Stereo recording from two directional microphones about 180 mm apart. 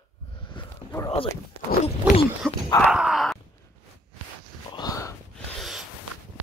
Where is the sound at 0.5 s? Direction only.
20° left (ahead or behind).